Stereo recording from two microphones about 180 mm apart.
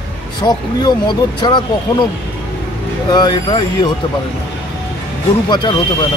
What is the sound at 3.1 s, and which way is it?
Speech, 25° left (ahead or behind).